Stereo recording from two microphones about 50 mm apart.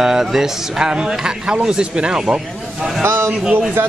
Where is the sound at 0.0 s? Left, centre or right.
Centre.